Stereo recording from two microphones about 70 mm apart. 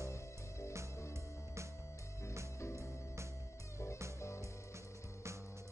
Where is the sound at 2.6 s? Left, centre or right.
Left.